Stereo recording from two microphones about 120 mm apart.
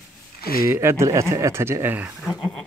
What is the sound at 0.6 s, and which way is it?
Speech, 20° right (ahead or behind).